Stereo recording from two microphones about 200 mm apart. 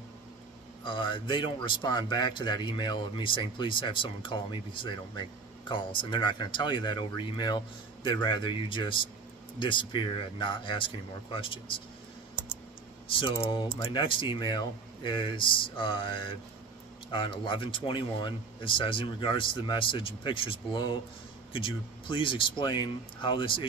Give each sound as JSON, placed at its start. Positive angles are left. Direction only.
{"t": 0.8, "sound": "a man's voice", "side_deg": 25}
{"t": 13.2, "sound": "a man's voice", "side_deg": 25}